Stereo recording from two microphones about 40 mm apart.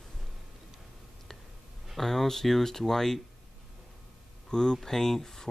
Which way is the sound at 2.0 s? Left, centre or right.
Centre.